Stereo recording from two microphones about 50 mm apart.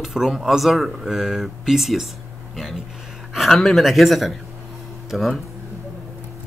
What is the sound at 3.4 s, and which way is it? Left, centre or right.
Speech, centre.